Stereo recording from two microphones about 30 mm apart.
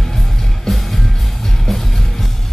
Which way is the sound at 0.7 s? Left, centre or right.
Centre.